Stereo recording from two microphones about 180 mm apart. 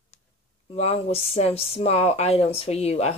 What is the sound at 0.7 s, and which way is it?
Speech, 35° left (ahead or behind).